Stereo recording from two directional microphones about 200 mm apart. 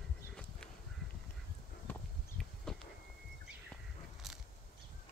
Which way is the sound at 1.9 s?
10° left (ahead or behind).